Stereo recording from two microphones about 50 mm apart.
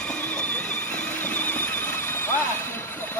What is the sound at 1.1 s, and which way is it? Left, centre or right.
Vehicle, left.